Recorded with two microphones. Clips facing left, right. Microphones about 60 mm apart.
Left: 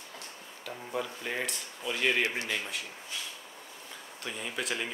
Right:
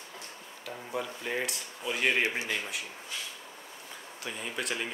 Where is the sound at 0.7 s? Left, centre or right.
Centre.